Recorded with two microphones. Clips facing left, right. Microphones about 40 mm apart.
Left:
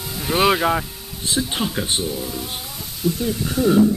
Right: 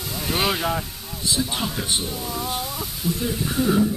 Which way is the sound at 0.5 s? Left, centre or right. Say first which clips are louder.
Left 5 dB; left.